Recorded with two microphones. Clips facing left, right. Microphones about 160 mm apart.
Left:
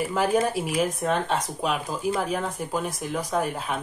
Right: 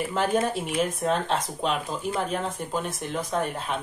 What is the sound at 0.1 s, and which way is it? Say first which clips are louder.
Speech: left 1 dB; 5° left (ahead or behind).